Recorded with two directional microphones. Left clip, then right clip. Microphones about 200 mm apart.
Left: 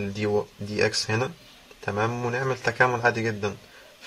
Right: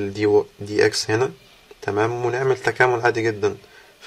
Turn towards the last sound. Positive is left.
turn(degrees=-40)  # may be behind; listen again after turning